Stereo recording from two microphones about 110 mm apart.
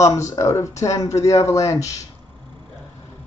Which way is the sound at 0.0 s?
30° left (ahead or behind).